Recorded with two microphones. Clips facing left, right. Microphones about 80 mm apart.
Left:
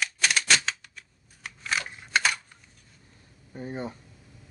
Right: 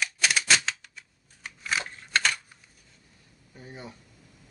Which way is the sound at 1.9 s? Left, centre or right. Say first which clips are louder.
Left 2 dB; centre.